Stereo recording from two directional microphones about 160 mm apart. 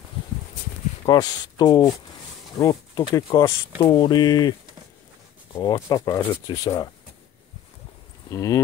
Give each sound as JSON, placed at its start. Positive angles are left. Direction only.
{"t": 1.0, "sound": "speech", "side_deg": 25}
{"t": 8.3, "sound": "speech", "side_deg": 20}